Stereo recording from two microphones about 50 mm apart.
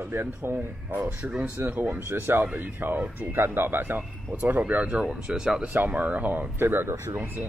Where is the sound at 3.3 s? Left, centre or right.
Right.